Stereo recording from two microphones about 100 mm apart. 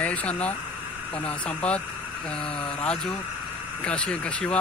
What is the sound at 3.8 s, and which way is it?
Speech, 10° left (ahead or behind).